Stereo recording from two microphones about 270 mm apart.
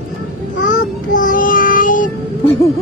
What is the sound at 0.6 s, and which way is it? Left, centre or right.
Child singing, left.